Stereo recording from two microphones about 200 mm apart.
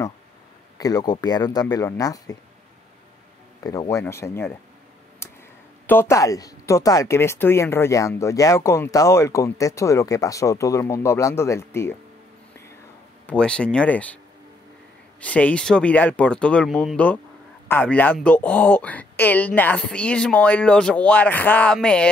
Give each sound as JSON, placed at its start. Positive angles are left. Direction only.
{"t": 0.7, "sound": "speech", "side_deg": 20}
{"t": 3.9, "sound": "speech", "side_deg": 15}
{"t": 5.2, "sound": "a sound", "side_deg": 10}
{"t": 5.9, "sound": "speech", "side_deg": 10}
{"t": 13.3, "sound": "speech", "side_deg": 5}
{"t": 15.1, "sound": "speech", "side_deg": 5}